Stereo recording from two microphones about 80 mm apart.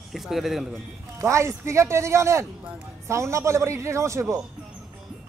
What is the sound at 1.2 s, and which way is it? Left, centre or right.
Speech, right.